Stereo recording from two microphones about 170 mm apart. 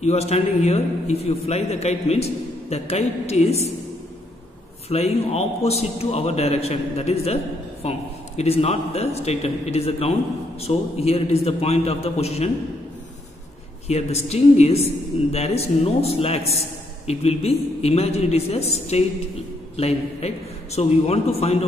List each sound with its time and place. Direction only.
0.0 s a man's voice: 40° left (ahead or behind)
4.8 s a man's voice: 40° left (ahead or behind)
13.8 s a man's voice: 40° left (ahead or behind)